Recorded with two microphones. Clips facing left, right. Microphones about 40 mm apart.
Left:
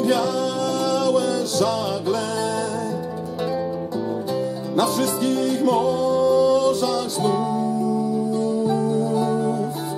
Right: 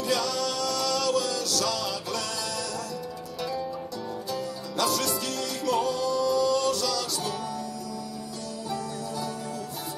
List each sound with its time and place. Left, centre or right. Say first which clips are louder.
0.0 s music: left 7 dB; left
4.3 s music: left 8 dB; left